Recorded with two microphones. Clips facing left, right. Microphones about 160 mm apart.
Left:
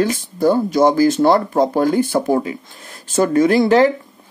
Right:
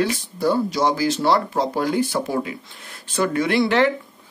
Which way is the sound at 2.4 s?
40° left (ahead or behind).